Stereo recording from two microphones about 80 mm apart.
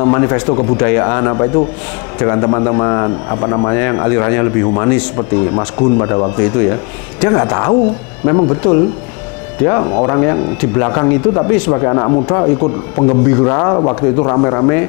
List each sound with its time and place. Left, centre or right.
0.0 s speech: left